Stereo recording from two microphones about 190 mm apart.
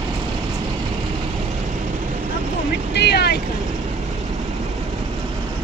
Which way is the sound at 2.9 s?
60° left (ahead or behind).